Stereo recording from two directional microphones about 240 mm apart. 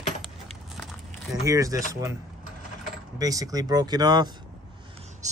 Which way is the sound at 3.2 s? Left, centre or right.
Centre.